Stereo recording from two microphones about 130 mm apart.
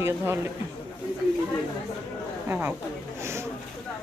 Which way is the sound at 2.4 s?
15° right (ahead or behind).